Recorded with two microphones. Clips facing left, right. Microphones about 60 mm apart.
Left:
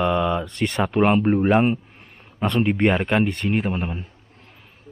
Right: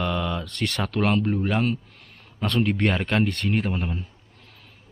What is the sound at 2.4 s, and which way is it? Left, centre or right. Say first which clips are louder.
Speech: left 4 dB; centre.